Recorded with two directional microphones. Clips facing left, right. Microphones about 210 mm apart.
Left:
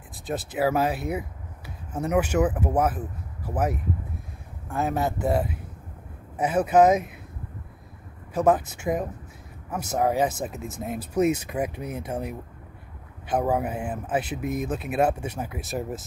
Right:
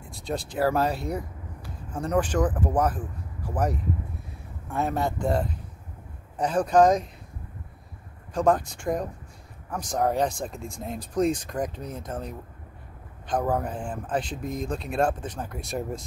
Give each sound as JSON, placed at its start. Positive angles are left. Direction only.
{"t": 0.1, "sound": "speech", "side_deg": 5}
{"t": 8.3, "sound": "speech", "side_deg": 5}